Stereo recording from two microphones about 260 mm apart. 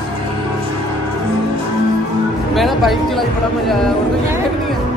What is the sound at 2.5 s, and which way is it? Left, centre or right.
Music, centre.